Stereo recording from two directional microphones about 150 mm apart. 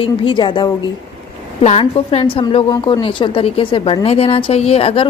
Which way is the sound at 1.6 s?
45° left (ahead or behind).